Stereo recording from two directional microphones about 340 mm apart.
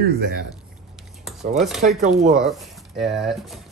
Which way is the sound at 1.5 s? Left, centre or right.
Centre.